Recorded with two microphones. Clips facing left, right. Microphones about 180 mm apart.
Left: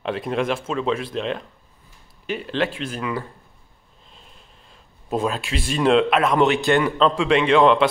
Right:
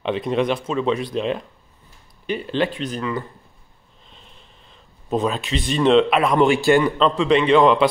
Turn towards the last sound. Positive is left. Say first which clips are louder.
# right 1 dB
turn(degrees=0)  # may be behind; listen again after turning